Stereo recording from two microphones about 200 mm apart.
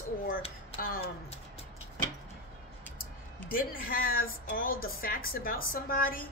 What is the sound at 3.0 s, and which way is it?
Speech, 45° left (ahead or behind).